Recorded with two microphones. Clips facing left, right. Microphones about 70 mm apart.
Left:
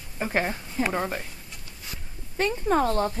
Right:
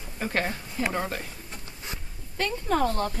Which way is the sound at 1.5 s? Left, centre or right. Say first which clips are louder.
Right 3 dB; right.